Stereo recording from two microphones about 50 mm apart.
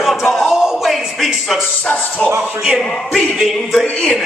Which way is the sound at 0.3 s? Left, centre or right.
Centre.